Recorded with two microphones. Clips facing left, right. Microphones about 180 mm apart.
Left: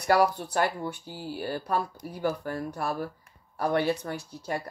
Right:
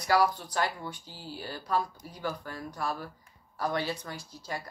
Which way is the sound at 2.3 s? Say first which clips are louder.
Left 6 dB; 50° left (ahead or behind).